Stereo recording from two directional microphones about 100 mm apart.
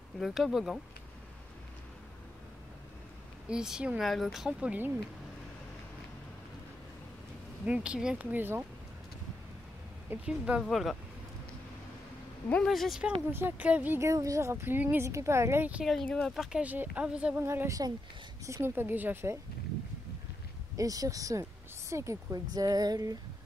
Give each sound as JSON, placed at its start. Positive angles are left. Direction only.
{"t": 0.2, "sound": "speech", "side_deg": -5}
{"t": 3.4, "sound": "speech", "side_deg": -5}
{"t": 7.6, "sound": "speech", "side_deg": -10}
{"t": 10.0, "sound": "speech", "side_deg": -10}
{"t": 10.6, "sound": "speech", "side_deg": 0}
{"t": 12.6, "sound": "speech", "side_deg": 0}
{"t": 13.3, "sound": "speech", "side_deg": -20}
{"t": 14.0, "sound": "speech", "side_deg": -35}
{"t": 15.8, "sound": "speech", "side_deg": 0}
{"t": 16.6, "sound": "speech", "side_deg": -15}
{"t": 17.4, "sound": "speech", "side_deg": -25}
{"t": 20.7, "sound": "speech", "side_deg": -35}